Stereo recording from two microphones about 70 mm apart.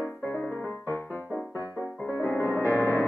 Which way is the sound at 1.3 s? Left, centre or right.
Right.